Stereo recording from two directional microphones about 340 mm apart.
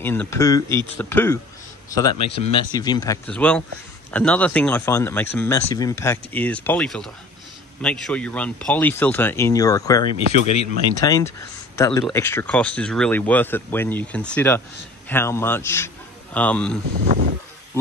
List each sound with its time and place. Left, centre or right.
0.0 s speech: centre
2.2 s speech: centre
10.5 s speech: left
11.0 s speech: centre
17.0 s a sound: right